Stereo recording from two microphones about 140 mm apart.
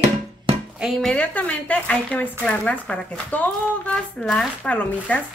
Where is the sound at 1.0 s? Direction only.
10° left (ahead or behind).